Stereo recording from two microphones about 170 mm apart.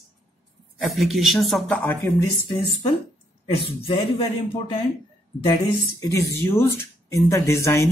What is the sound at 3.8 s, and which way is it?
Speech, 35° left (ahead or behind).